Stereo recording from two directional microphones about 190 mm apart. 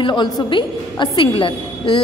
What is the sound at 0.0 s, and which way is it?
A woman's voice, 25° left (ahead or behind).